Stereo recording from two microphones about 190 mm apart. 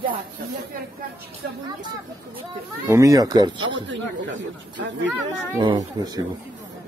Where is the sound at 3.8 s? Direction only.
75° right (ahead or behind).